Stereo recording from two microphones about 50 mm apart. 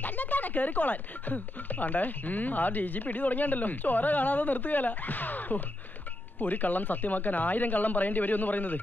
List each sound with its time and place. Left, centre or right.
0.0 s speech: left